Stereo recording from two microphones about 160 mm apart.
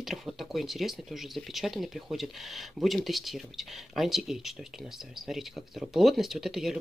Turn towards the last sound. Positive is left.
turn(degrees=0)  # may be behind; listen again after turning